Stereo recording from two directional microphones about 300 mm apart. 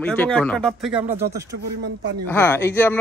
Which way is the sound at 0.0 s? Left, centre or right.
Centre.